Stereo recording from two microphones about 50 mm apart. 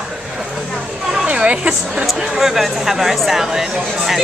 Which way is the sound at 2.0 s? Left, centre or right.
Centre.